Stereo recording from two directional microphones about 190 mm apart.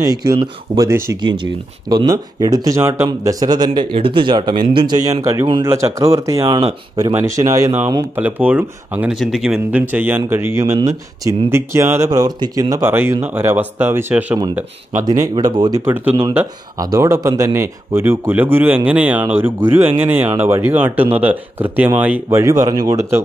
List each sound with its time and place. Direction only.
0.0 s speech: 20° right (ahead or behind)
1.2 s speech: 25° right (ahead or behind)